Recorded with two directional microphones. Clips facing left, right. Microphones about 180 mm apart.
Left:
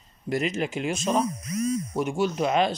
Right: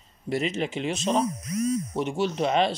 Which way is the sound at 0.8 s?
5° left (ahead or behind).